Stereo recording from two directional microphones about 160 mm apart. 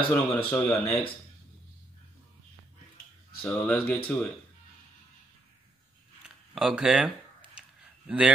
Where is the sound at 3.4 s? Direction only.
15° left (ahead or behind).